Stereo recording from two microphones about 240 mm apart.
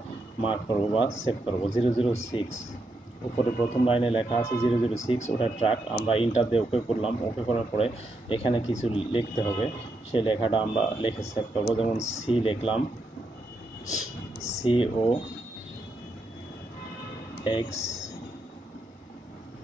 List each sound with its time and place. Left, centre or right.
0.4 s speech: left
3.8 s speech: left
13.8 s speech: left
17.4 s speech: left